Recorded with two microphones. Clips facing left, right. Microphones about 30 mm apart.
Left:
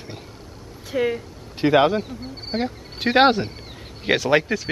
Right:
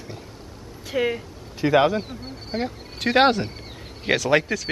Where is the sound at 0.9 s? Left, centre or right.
Centre.